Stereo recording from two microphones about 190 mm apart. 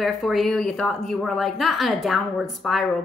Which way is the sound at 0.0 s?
Centre (ahead or behind).